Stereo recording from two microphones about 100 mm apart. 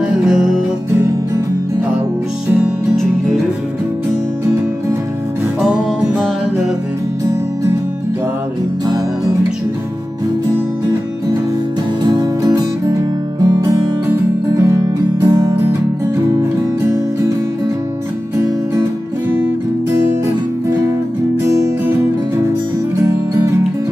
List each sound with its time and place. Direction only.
0.0 s music: 5° right (ahead or behind)
12.1 s music: 40° right (ahead or behind)
21.5 s music: 25° right (ahead or behind)
23.0 s music: 30° right (ahead or behind)